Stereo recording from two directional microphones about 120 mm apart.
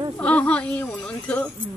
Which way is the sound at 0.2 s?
10° left (ahead or behind).